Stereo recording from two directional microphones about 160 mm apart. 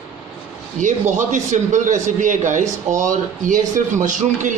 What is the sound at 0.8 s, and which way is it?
A man's voice, 50° right (ahead or behind).